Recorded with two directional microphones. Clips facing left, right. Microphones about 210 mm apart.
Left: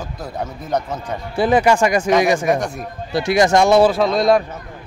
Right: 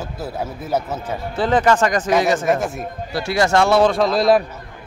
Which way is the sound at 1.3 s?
10° left (ahead or behind).